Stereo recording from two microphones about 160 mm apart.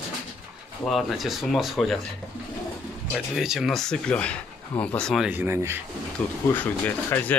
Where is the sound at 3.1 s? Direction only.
5° right (ahead or behind).